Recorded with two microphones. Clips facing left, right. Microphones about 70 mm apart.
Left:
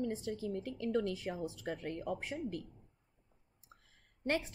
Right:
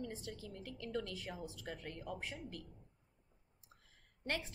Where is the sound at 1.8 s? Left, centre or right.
Left.